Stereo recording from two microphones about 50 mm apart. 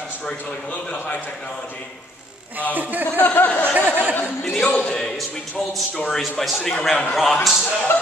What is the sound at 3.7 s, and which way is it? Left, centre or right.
Speech, right.